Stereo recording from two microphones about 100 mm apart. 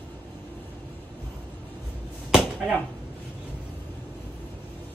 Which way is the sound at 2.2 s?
5° right (ahead or behind).